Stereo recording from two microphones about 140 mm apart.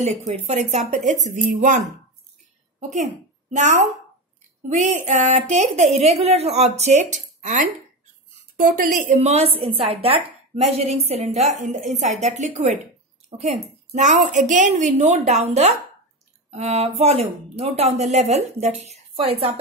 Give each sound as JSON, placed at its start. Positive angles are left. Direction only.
{"t": 0.0, "sound": "a woman's voice", "side_deg": -50}
{"t": 2.9, "sound": "a woman's voice", "side_deg": -60}
{"t": 5.0, "sound": "a woman's voice", "side_deg": -60}
{"t": 8.3, "sound": "a woman's voice", "side_deg": -80}
{"t": 19.1, "sound": "a woman's voice", "side_deg": -45}